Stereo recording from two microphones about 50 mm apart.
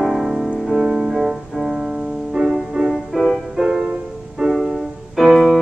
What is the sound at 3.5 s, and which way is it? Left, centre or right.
Music, centre.